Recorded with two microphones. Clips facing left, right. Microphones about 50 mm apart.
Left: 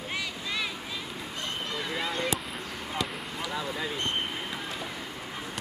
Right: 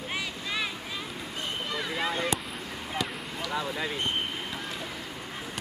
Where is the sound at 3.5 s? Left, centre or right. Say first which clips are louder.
Right 2 dB; centre.